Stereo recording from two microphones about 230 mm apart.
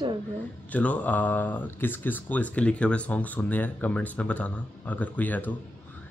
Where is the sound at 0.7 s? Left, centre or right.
Centre.